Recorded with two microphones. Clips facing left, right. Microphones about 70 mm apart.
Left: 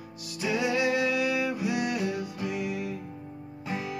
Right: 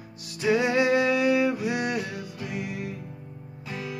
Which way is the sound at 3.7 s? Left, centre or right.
Centre.